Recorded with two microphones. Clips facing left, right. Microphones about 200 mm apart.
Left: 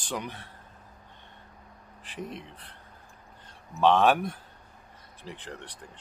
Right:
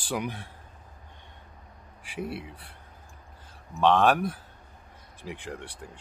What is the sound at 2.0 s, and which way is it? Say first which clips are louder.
Speech: right 4 dB; 10° right (ahead or behind).